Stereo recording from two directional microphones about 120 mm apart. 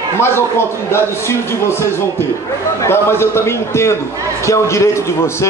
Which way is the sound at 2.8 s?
20° left (ahead or behind).